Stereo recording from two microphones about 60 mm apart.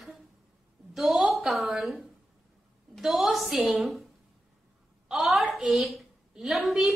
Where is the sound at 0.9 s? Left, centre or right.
Centre.